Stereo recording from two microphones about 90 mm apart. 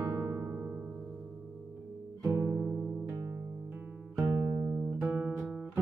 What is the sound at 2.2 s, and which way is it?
Guitar, 25° right (ahead or behind).